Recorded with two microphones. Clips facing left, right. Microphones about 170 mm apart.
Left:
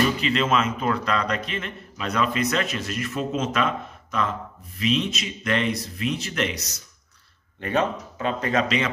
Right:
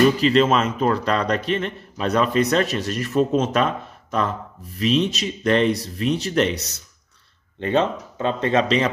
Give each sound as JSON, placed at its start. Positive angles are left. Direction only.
{"t": 0.2, "sound": "a man's voice", "side_deg": -35}